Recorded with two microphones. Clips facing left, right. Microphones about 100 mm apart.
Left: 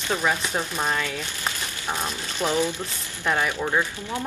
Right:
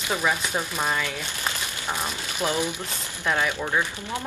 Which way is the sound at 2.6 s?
15° right (ahead or behind).